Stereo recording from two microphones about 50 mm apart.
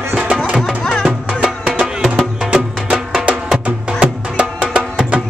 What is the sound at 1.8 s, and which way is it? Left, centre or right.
Music, centre.